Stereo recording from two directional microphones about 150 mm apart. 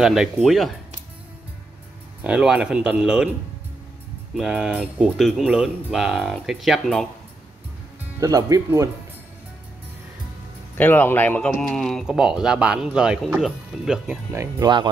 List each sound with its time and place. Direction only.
0.0 s speech: 5° right (ahead or behind)
2.2 s speech: 5° right (ahead or behind)
4.4 s speech: 5° right (ahead or behind)
8.2 s speech: 25° right (ahead or behind)
10.8 s speech: 10° left (ahead or behind); by 14.2 s 5° right (ahead or behind)
14.3 s speech: 20° right (ahead or behind)